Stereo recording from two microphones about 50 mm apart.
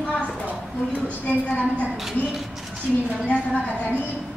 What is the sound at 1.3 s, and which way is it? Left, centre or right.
Speech, left.